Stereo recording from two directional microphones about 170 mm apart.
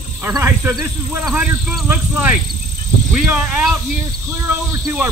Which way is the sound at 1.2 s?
Centre (ahead or behind).